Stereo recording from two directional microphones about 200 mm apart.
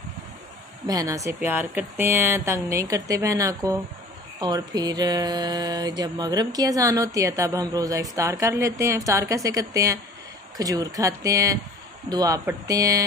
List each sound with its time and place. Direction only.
0.8 s mantra: 15° right (ahead or behind)